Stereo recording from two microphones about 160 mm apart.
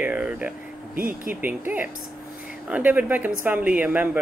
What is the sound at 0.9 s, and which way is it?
Speech, 60° right (ahead or behind).